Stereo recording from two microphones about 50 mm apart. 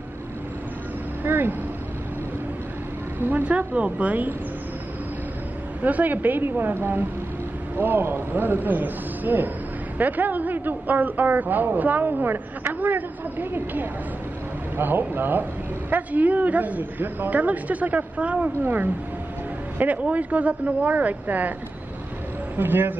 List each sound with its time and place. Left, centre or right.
1.2 s vehicle: right
3.2 s a man's voice: right
5.8 s a man's voice: right
6.4 s a woman's voice: right
22.6 s a woman's voice: right